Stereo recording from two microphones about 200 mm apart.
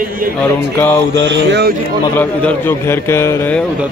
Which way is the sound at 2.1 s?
10° left (ahead or behind).